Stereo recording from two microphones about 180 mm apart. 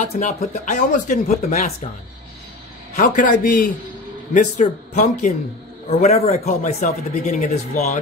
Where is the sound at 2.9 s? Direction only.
45° left (ahead or behind).